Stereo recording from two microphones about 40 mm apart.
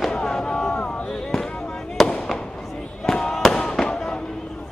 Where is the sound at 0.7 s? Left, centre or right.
Left.